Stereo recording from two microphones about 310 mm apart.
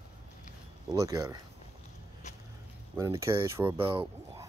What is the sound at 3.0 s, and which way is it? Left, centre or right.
Speech, centre.